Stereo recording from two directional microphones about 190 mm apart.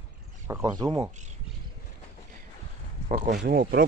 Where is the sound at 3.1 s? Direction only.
40° right (ahead or behind).